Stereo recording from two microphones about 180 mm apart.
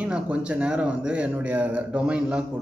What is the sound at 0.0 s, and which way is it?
Speech, 5° right (ahead or behind).